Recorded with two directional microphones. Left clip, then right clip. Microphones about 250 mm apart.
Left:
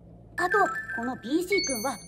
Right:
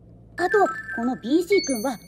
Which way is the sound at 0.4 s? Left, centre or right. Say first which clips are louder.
Right 4 dB; right.